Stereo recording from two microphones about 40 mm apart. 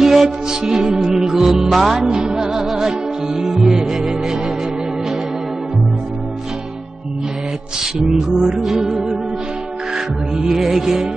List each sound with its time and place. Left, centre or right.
0.0 s music: centre
2.0 s music: centre
2.6 s music: centre
7.8 s music: centre
10.3 s music: centre